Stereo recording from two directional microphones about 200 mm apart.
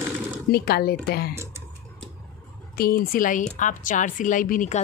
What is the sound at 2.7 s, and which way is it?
A woman's voice, 50° left (ahead or behind).